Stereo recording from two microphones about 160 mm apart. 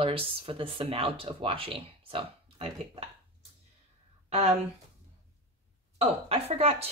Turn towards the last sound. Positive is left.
turn(degrees=-40)  # may be behind; listen again after turning